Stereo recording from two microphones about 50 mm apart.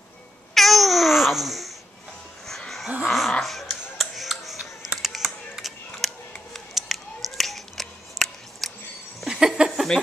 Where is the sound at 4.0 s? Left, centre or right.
Centre.